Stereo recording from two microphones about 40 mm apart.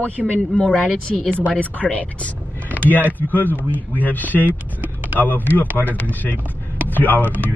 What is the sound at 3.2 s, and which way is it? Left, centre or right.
Speech, left.